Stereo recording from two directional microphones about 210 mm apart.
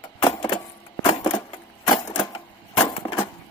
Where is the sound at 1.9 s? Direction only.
20° left (ahead or behind).